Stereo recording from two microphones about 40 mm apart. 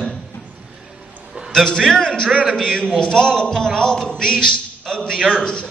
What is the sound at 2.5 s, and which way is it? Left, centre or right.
A man's voice, centre.